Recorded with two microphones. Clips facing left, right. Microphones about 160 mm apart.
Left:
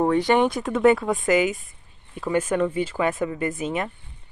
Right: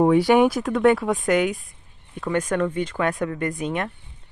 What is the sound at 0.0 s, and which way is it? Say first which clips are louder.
Speech: right 3 dB; 10° right (ahead or behind).